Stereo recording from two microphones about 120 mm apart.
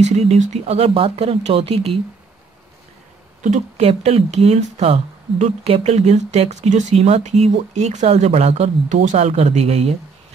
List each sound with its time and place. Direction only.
0.0 s speech: 65° right (ahead or behind)
3.4 s speech: 70° right (ahead or behind)